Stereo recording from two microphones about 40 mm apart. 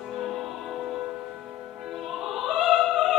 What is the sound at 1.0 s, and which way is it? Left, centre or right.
Music, centre.